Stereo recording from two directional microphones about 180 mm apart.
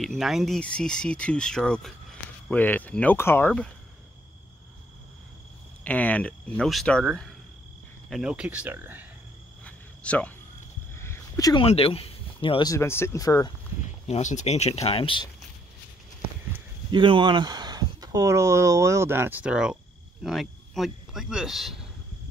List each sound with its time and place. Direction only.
0.0 s speech: centre (ahead or behind)
5.9 s speech: 10° left (ahead or behind)
8.1 s speech: 5° right (ahead or behind)
9.7 s cricket: 5° left (ahead or behind)
11.0 s a sound: 15° left (ahead or behind)
11.6 s speech: 30° left (ahead or behind)
12.7 s speech: 15° left (ahead or behind)
13.8 s speech: 40° left (ahead or behind)
16.9 s speech: 25° right (ahead or behind); by 21.8 s centre (ahead or behind)